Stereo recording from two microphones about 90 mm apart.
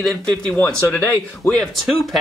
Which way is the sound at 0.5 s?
20° left (ahead or behind).